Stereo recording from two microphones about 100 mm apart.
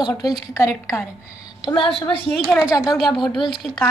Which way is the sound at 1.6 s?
60° left (ahead or behind).